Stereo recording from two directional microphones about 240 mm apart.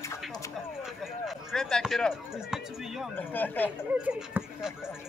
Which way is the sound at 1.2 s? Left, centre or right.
Centre.